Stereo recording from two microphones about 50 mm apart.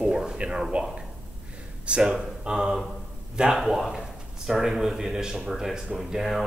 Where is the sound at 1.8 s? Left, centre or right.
Centre.